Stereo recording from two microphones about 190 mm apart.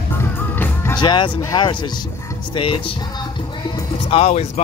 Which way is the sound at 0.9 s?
25° left (ahead or behind).